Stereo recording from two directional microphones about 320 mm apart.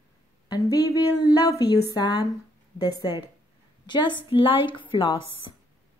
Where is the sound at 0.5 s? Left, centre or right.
Centre.